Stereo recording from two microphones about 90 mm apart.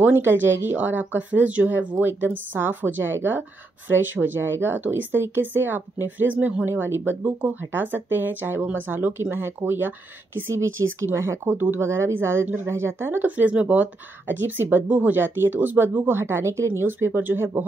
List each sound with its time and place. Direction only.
0.0 s speech: 25° right (ahead or behind)